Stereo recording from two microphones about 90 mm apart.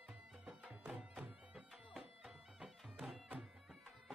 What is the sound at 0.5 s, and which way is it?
Music, 15° right (ahead or behind).